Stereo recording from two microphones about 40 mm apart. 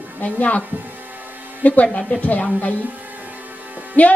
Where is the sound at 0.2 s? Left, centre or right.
Left.